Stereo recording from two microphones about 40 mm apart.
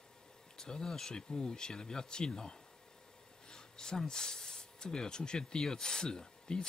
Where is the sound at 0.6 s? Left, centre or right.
Centre.